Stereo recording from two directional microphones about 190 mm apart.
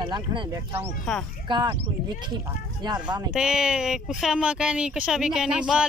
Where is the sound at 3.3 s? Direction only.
5° right (ahead or behind).